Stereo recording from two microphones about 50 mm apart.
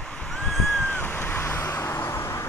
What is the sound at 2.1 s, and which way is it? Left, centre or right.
Vehicle, left.